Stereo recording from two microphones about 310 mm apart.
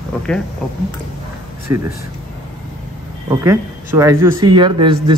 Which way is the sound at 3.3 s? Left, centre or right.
Centre.